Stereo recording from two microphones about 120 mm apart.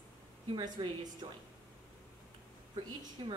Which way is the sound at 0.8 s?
35° right (ahead or behind).